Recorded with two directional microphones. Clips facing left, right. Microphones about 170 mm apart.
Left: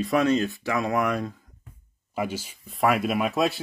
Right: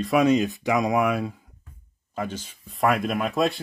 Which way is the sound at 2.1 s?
10° left (ahead or behind).